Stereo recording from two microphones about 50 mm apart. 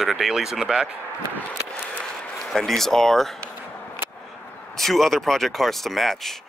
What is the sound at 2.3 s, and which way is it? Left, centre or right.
Speech, centre.